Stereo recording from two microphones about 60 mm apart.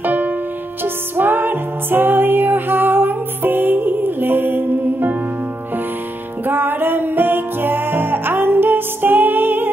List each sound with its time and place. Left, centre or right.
0.0 s music: right
6.4 s music: right